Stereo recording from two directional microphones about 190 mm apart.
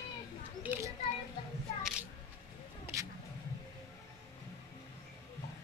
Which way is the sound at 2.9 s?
10° right (ahead or behind).